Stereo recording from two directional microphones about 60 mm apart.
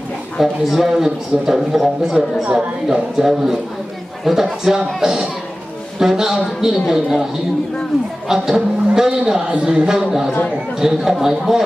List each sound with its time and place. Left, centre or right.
0.4 s a man's voice: centre
8.3 s a man's voice: centre